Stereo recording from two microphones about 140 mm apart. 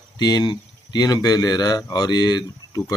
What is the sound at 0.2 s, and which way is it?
Speech, 30° left (ahead or behind).